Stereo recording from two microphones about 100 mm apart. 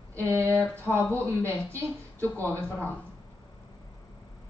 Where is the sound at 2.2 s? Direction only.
15° left (ahead or behind).